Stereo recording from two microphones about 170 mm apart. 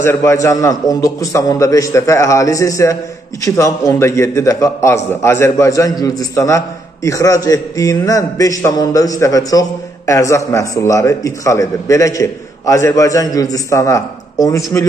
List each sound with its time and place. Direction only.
0.0 s a man's voice: 15° left (ahead or behind)